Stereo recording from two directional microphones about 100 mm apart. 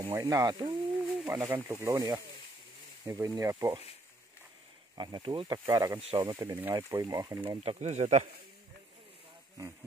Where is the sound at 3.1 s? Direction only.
30° right (ahead or behind).